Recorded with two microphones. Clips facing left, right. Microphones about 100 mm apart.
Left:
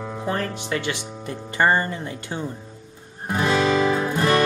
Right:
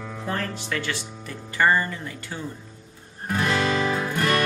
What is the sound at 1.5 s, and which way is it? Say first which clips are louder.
Speech: left 1 dB; 30° left (ahead or behind).